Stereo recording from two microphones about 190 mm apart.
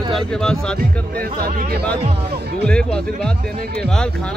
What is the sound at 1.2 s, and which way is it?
Speech, 50° right (ahead or behind).